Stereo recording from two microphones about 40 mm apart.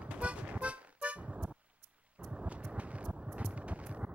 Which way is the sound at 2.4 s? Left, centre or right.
Right.